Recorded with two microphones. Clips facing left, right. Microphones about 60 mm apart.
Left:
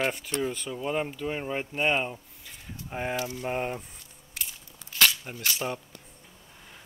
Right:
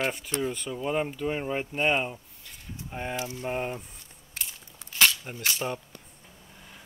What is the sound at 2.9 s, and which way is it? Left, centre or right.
Speech, left.